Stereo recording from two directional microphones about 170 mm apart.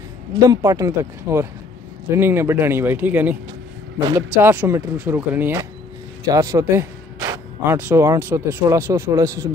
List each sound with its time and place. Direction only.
0.4 s speech: 20° right (ahead or behind)
4.4 s speech: 15° right (ahead or behind)